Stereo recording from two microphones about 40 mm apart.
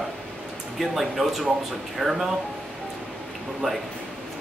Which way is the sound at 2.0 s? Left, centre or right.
Right.